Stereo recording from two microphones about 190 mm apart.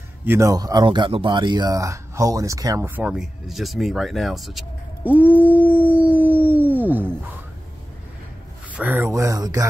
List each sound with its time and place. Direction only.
0.2 s speech: 15° right (ahead or behind)
8.7 s speech: 10° right (ahead or behind)